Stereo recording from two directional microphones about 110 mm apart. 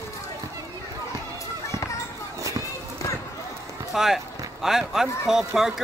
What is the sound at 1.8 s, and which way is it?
Basketball bounce, 30° left (ahead or behind).